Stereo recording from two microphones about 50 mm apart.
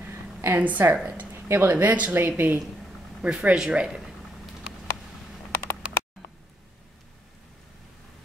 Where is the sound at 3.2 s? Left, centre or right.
Right.